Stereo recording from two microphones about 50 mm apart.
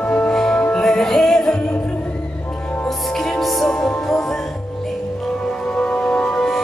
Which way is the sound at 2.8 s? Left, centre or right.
Centre.